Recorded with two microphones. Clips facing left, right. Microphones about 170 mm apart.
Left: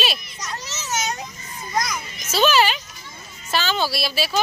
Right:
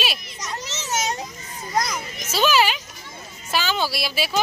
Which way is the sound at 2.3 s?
10° right (ahead or behind).